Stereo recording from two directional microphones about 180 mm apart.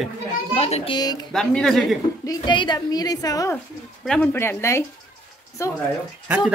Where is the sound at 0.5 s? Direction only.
35° left (ahead or behind).